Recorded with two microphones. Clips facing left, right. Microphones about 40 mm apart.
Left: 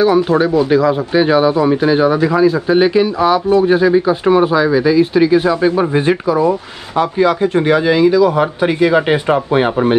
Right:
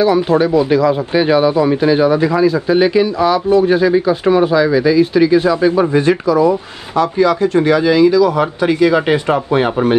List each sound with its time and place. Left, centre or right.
0.4 s a man's voice: centre